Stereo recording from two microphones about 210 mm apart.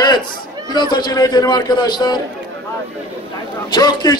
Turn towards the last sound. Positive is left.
turn(degrees=20)  # may be behind; listen again after turning